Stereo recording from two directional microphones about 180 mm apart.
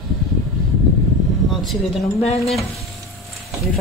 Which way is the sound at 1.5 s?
Centre (ahead or behind).